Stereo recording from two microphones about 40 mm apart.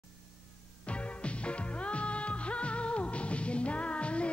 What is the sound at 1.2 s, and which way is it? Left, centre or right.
Music, left.